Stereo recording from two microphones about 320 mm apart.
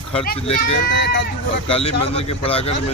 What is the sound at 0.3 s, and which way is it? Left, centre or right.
Speech, left.